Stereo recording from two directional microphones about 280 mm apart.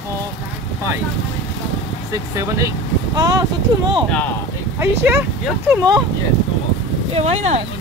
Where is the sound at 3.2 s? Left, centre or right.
Centre.